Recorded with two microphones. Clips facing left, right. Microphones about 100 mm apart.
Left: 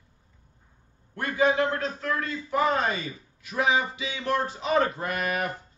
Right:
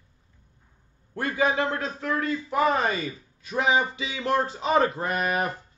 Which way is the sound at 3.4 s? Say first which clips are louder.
Right 2 dB; 30° right (ahead or behind).